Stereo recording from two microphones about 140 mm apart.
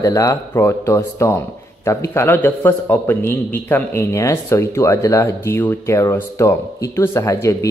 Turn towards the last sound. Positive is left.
turn(degrees=20)  # may be behind; listen again after turning